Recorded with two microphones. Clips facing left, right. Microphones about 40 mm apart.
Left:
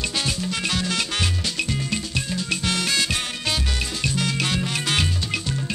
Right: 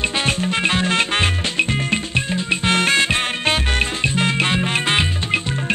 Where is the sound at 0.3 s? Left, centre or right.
Right.